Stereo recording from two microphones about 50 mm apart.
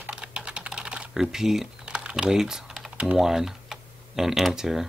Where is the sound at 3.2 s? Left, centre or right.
Centre.